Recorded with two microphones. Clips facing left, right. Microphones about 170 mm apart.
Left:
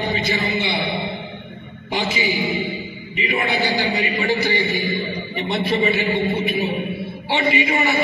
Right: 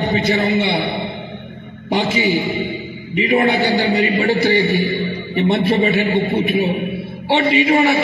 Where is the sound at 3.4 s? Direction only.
65° right (ahead or behind).